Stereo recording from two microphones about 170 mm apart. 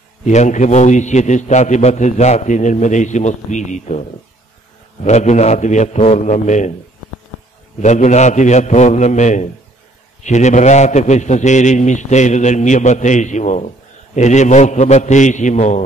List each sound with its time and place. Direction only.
0.2 s a man's voice: 45° left (ahead or behind)
5.0 s a man's voice: 40° left (ahead or behind)
7.8 s a man's voice: 45° left (ahead or behind)